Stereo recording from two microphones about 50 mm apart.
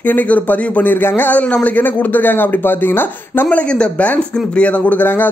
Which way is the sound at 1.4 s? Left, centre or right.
Left.